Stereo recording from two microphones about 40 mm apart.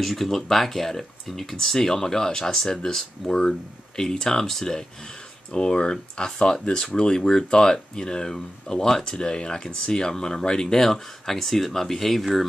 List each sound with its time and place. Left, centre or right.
0.0 s speech: centre